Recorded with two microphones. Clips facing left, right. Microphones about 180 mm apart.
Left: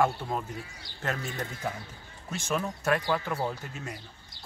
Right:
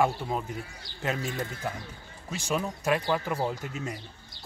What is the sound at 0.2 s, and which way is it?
Speech, 15° right (ahead or behind).